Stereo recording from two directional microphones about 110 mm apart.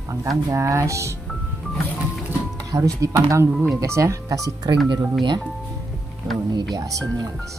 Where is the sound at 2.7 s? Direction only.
30° right (ahead or behind).